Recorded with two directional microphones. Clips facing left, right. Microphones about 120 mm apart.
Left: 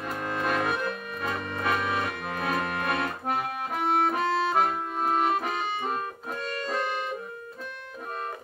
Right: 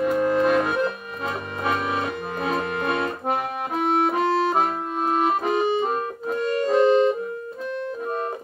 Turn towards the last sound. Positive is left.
turn(degrees=-20)  # may be behind; listen again after turning